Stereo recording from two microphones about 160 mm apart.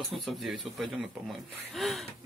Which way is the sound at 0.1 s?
Centre (ahead or behind).